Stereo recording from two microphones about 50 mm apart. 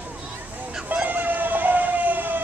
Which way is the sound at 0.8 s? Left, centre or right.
Right.